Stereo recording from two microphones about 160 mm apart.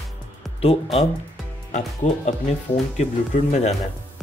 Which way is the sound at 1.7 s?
45° left (ahead or behind).